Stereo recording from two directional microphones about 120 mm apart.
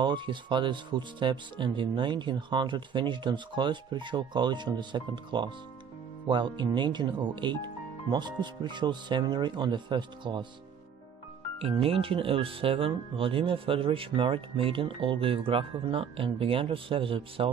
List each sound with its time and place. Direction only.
0.0 s speech: 40° right (ahead or behind)
11.8 s speech: 50° right (ahead or behind)